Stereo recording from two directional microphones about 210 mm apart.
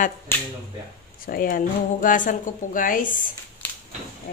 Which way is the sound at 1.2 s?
45° left (ahead or behind).